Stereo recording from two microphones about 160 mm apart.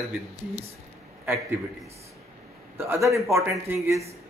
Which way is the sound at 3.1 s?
15° right (ahead or behind).